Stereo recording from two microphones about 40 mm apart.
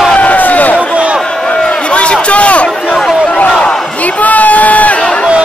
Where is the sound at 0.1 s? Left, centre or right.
Left.